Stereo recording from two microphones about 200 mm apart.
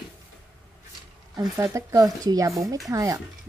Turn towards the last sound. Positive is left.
turn(degrees=-15)  # may be behind; listen again after turning